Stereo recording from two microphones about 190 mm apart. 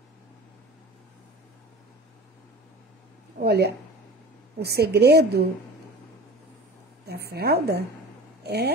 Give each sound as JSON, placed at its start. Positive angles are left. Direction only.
{"t": 3.3, "sound": "a woman's voice", "side_deg": -60}
{"t": 7.1, "sound": "a woman's voice", "side_deg": -55}